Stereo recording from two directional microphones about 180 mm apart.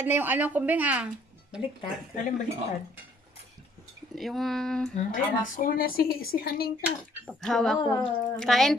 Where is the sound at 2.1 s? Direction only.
45° left (ahead or behind).